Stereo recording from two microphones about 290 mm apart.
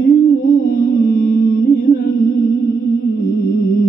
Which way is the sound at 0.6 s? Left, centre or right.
Left.